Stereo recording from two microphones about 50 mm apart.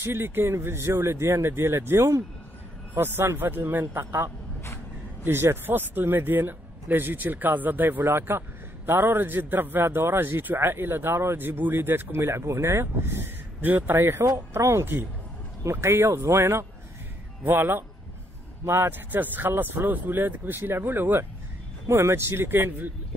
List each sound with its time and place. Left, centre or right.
0.0 s speech: right
2.9 s a man's voice: right
5.2 s a man's voice: right
11.3 s a man's voice: right
12.4 s speech: right
12.7 s speech: right
13.6 s a man's voice: right
15.6 s speech: right
17.4 s a man's voice: right
21.8 s speech: right